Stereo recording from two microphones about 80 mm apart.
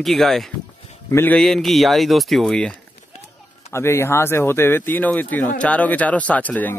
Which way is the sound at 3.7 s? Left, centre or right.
Left.